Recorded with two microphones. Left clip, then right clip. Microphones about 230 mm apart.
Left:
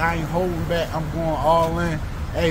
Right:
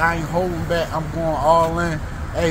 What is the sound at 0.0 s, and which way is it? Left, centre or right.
Speech, centre.